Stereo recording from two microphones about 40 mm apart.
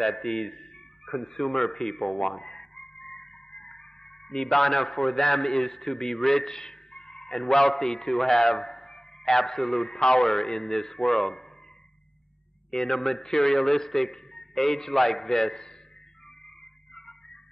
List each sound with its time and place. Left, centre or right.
0.0 s music: centre
4.3 s a man's voice: centre
12.7 s a man's voice: centre